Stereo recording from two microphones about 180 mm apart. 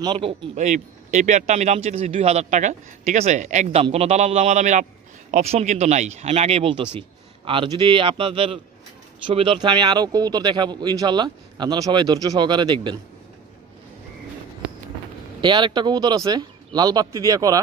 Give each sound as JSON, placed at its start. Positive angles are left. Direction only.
{"t": 0.0, "sound": "speech", "side_deg": -25}
{"t": 15.4, "sound": "speech", "side_deg": -25}